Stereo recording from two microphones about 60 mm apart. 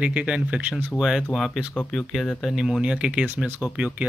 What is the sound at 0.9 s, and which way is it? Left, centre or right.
Speech, centre.